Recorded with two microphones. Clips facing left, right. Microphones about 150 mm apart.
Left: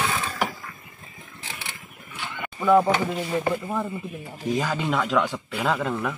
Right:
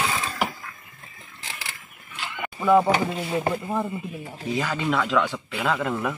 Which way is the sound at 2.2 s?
10° right (ahead or behind).